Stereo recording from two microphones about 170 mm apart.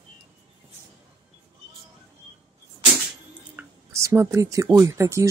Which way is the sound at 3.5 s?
15° right (ahead or behind).